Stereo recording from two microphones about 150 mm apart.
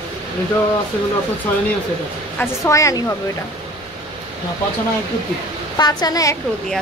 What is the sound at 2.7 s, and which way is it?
Speech, 20° left (ahead or behind).